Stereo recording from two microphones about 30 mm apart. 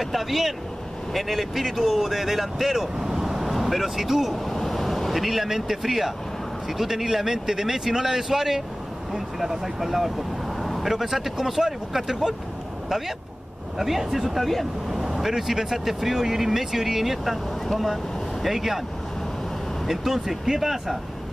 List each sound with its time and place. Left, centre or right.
0.0 s speech: centre
4.5 s vehicle: centre
5.1 s speech: centre
13.7 s speech: centre
18.4 s speech: centre
19.9 s speech: centre